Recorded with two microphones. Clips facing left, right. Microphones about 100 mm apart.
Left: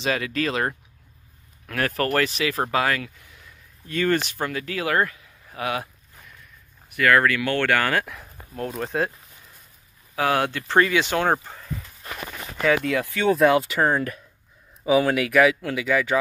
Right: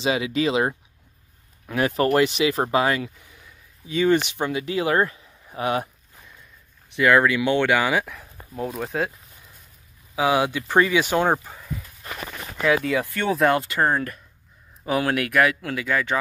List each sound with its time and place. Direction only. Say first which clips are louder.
0.1 s speech: right 3 dB; 15° right (ahead or behind)
2.1 s speech: right 3 dB; 25° right (ahead or behind)
8.0 s speech: even; centre (ahead or behind)
10.1 s speech: right 2 dB; 10° right (ahead or behind)
11.4 s a sound: even; 5° right (ahead or behind)
12.6 s speech: even; 5° right (ahead or behind)